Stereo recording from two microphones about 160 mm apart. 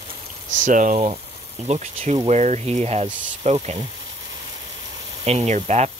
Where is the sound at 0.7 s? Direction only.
50° right (ahead or behind).